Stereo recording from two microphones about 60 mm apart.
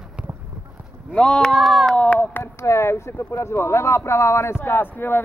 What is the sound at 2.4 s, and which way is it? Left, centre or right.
Speech, left.